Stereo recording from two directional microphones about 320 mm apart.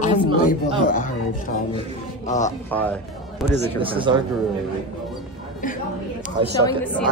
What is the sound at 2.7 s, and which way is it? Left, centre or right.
Speech, centre.